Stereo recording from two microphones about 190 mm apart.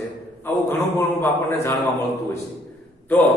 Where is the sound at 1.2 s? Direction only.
10° left (ahead or behind).